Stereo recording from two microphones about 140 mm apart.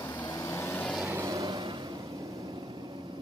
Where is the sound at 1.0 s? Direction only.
20° right (ahead or behind).